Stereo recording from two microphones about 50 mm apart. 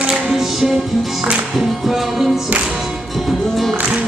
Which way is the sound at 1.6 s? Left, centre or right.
Centre.